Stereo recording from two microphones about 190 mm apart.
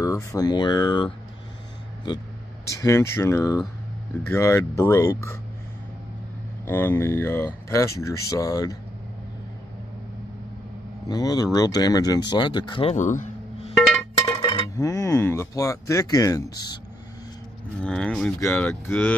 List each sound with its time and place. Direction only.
0.0 s speech: 15° left (ahead or behind)
2.7 s speech: 15° left (ahead or behind)
6.6 s speech: 10° left (ahead or behind)
11.1 s speech: 20° left (ahead or behind)
12.9 s music: 40° left (ahead or behind)
14.2 s speech: 25° left (ahead or behind)
17.7 s speech: 5° left (ahead or behind)